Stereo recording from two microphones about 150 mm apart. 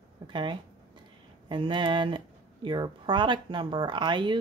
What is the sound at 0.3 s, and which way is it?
Speech, 30° right (ahead or behind).